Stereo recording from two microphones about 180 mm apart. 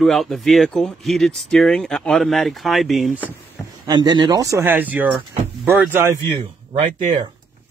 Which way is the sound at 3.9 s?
25° right (ahead or behind).